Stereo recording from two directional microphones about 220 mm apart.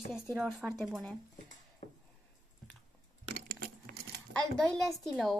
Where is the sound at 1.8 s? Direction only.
30° left (ahead or behind).